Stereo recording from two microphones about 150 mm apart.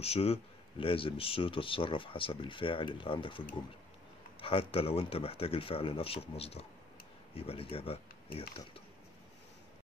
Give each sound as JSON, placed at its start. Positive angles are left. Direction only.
{"t": 0.0, "sound": "speech", "side_deg": 40}